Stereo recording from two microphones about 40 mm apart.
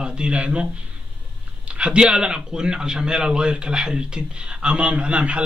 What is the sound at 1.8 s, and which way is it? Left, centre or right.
A man's voice, right.